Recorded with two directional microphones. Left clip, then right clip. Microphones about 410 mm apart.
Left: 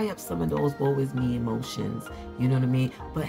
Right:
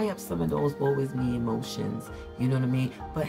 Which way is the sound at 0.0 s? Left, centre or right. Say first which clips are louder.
Even; centre.